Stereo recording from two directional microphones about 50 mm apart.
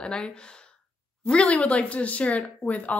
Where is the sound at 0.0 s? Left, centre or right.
Centre.